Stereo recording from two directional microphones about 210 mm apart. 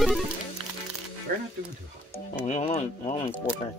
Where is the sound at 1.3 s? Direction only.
45° right (ahead or behind).